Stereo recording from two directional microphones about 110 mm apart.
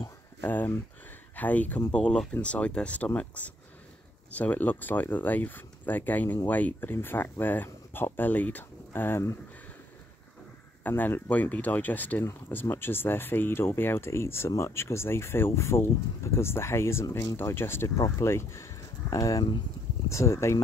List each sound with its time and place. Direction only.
0.4 s speech: 20° left (ahead or behind)
10.8 s speech: 15° left (ahead or behind)